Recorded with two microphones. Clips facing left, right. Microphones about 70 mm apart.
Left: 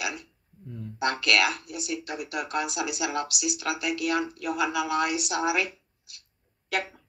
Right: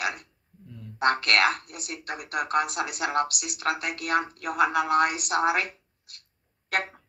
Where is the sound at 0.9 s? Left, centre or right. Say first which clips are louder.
Right 2 dB; right.